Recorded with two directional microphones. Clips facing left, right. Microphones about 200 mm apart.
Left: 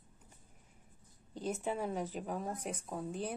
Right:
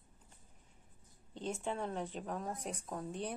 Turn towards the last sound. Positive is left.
turn(degrees=0)  # may be behind; listen again after turning